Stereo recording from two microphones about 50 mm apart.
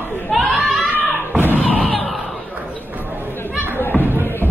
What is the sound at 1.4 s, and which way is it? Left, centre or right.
Thump, left.